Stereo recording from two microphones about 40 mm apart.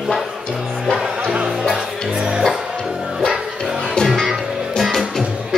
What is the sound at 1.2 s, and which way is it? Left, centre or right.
Music, right.